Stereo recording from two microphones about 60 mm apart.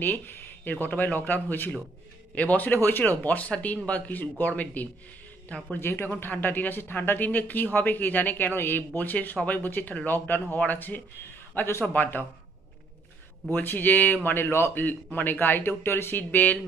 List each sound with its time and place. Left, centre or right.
0.0 s speech: left
5.8 s speech: left
11.5 s a man's voice: left
11.8 s speech: left
13.5 s speech: left
14.3 s speech: left
14.7 s speech: left